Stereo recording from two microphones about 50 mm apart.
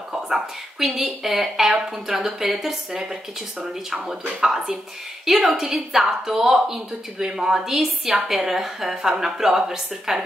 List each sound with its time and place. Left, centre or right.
0.1 s a woman's voice: centre
4.3 s a woman's voice: centre